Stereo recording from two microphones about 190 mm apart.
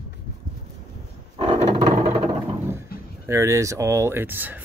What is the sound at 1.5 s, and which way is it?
Roar, 30° right (ahead or behind).